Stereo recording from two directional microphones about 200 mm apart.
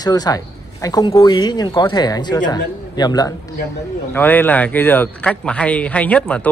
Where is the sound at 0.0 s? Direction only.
20° left (ahead or behind).